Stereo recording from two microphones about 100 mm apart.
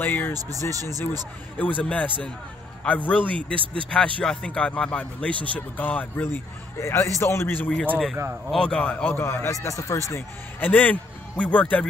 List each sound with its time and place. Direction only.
0.0 s speech: 20° left (ahead or behind)
0.3 s speech: 40° right (ahead or behind)
0.8 s speech: 25° left (ahead or behind)
1.8 s a man's voice: 15° left (ahead or behind)
8.5 s speech: 10° left (ahead or behind); by 10.2 s 30° left (ahead or behind)
10.6 s speech: 15° left (ahead or behind)